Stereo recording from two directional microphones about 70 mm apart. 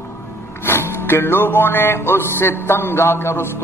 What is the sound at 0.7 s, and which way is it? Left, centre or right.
Music, left.